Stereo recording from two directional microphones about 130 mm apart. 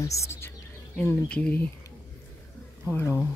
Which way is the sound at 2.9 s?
20° left (ahead or behind).